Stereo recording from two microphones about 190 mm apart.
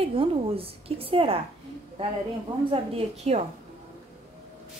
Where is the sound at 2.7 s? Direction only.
30° right (ahead or behind).